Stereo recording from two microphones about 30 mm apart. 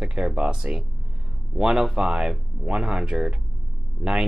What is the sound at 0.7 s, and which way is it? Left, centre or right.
Speech, right.